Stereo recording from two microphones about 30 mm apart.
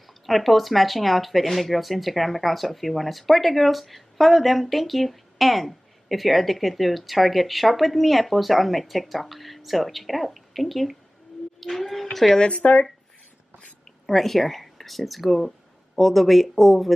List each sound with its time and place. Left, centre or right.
0.0 s speech: centre
12.4 s speech: left
14.0 s speech: centre